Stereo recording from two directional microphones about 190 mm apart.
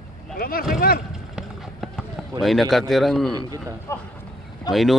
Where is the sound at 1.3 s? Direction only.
Centre (ahead or behind).